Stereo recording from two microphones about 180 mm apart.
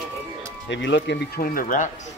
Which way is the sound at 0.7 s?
85° left.